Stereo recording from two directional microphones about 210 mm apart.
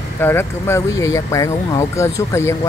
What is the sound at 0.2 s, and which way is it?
Speech, 10° left (ahead or behind).